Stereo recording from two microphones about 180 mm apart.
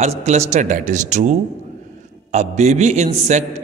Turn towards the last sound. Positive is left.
turn(degrees=-40)  # may be behind; listen again after turning